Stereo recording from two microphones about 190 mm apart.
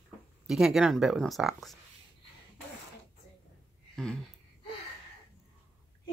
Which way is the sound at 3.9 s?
5° left (ahead or behind).